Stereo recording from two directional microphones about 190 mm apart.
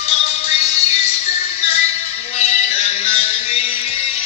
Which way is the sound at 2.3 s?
35° left (ahead or behind).